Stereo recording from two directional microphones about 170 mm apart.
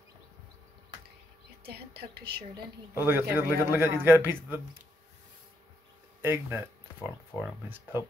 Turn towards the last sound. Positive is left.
turn(degrees=-10)  # may be behind; listen again after turning